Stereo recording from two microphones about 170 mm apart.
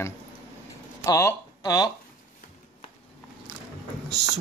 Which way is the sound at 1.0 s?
20° left (ahead or behind).